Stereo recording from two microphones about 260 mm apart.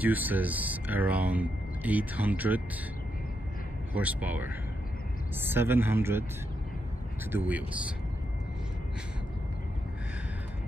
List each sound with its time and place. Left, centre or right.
0.0 s speech: centre
3.9 s speech: centre
7.2 s speech: centre